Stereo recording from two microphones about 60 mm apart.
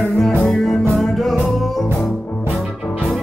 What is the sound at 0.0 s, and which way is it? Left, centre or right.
Music, centre.